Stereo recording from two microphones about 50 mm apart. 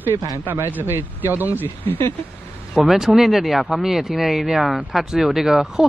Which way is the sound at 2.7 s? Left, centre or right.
Centre.